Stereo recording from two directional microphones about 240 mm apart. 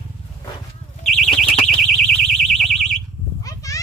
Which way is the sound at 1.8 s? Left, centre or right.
Centre.